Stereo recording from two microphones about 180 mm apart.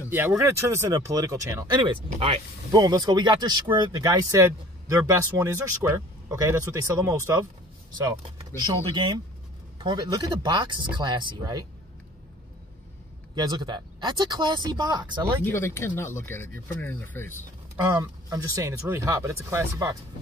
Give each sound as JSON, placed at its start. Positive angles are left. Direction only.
{"t": 0.1, "sound": "speech", "side_deg": -10}
{"t": 8.2, "sound": "speech", "side_deg": -30}
{"t": 13.3, "sound": "speech", "side_deg": -25}
{"t": 15.4, "sound": "speech", "side_deg": 15}
{"t": 17.7, "sound": "speech", "side_deg": -20}